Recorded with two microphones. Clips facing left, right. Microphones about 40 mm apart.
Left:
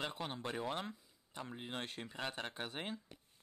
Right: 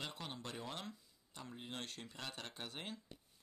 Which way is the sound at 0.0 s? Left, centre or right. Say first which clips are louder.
Left 5 dB; left.